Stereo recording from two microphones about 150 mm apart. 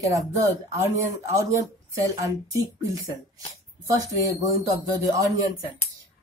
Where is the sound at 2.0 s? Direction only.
20° right (ahead or behind).